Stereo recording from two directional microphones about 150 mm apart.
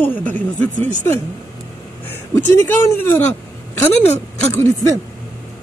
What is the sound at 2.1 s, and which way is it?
A man's voice, 15° left (ahead or behind).